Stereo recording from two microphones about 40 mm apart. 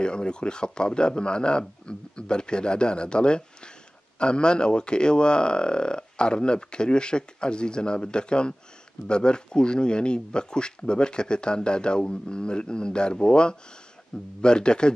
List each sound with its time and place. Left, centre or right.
0.0 s speech: left